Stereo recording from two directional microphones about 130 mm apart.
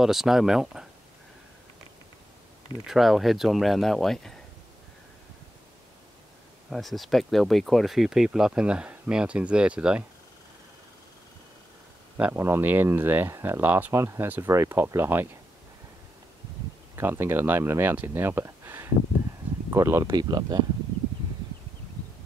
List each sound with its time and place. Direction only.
0.0 s speech: 5° right (ahead or behind)
2.9 s speech: centre (ahead or behind)
6.7 s speech: centre (ahead or behind)
12.2 s speech: 15° right (ahead or behind)
16.9 s speech: 20° right (ahead or behind)
20.1 s speech: 30° right (ahead or behind)